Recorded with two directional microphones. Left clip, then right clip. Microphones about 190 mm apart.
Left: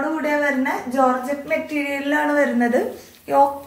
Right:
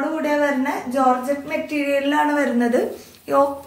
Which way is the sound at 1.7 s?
15° right (ahead or behind).